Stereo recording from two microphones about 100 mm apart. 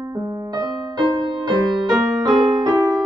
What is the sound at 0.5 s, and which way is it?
Music, 45° right (ahead or behind).